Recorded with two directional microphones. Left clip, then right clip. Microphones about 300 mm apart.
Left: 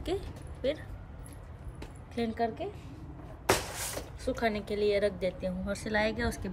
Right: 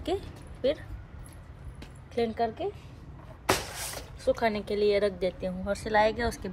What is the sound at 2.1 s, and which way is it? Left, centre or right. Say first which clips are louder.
Speech: right 4 dB; centre.